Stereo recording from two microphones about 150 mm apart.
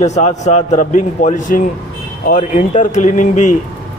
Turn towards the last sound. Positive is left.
turn(degrees=55)  # may be behind; listen again after turning